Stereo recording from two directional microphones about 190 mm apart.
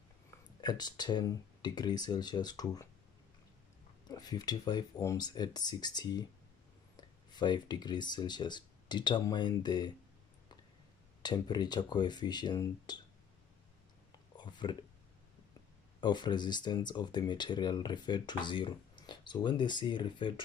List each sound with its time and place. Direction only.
0.6 s speech: 20° left (ahead or behind)
4.1 s speech: 20° left (ahead or behind)
11.2 s speech: 20° left (ahead or behind)
14.3 s a sound: 25° left (ahead or behind)
16.0 s speech: 25° left (ahead or behind)